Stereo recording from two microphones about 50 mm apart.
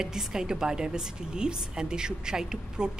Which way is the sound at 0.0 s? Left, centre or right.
Centre.